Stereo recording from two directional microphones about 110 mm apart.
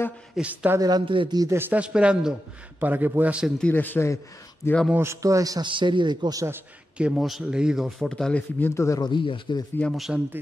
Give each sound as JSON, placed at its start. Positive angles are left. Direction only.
{"t": 0.4, "sound": "speech", "side_deg": -10}
{"t": 0.7, "sound": "a man's voice", "side_deg": -40}
{"t": 1.4, "sound": "speech", "side_deg": -25}
{"t": 1.7, "sound": "speech", "side_deg": -10}
{"t": 3.4, "sound": "a man's voice", "side_deg": 5}
{"t": 3.7, "sound": "speech", "side_deg": 15}
{"t": 4.9, "sound": "a man's voice", "side_deg": -25}
{"t": 5.7, "sound": "a man's voice", "side_deg": -45}
{"t": 7.0, "sound": "a man's voice", "side_deg": -5}
{"t": 8.0, "sound": "speech", "side_deg": 5}
{"t": 9.0, "sound": "speech", "side_deg": 45}
{"t": 9.9, "sound": "a man's voice", "side_deg": -5}